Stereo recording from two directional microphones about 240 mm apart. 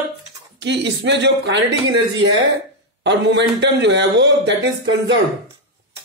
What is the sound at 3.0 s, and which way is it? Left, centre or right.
Speech, right.